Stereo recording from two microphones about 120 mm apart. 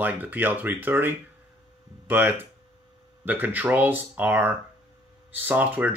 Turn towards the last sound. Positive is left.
turn(degrees=-15)  # may be behind; listen again after turning